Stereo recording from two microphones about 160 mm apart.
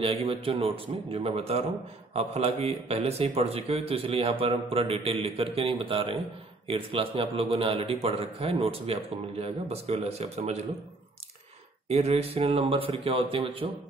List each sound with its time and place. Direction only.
0.0 s a man's voice: 35° right (ahead or behind)
11.9 s a man's voice: 40° right (ahead or behind)